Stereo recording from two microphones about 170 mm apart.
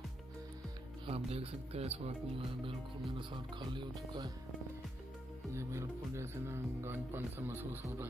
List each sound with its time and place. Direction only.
1.0 s speech: 35° right (ahead or behind)
5.5 s speech: 15° right (ahead or behind)